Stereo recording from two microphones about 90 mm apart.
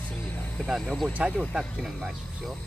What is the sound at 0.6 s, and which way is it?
Speech, 5° right (ahead or behind).